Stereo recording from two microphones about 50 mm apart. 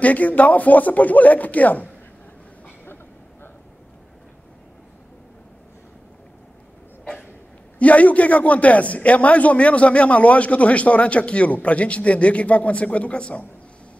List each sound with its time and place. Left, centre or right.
0.0 s speech: left
7.8 s a man's voice: left